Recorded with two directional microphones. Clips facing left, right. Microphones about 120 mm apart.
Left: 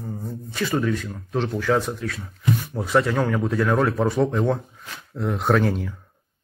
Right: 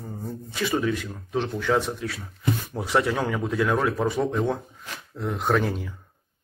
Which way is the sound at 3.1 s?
5° right (ahead or behind).